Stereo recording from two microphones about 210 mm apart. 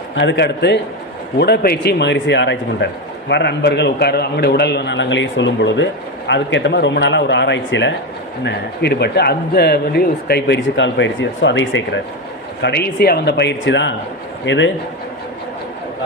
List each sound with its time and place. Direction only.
0.1 s a man's voice: 60° left (ahead or behind)
12.6 s a man's voice: 50° left (ahead or behind)